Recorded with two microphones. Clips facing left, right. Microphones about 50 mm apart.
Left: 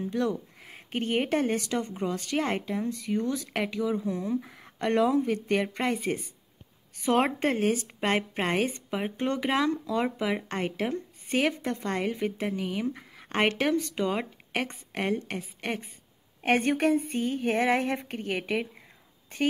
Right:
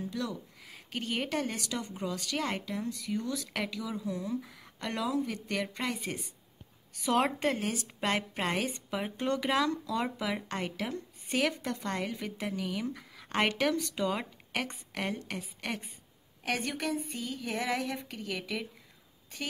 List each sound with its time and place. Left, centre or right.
0.0 s a woman's voice: left
16.4 s a woman's voice: left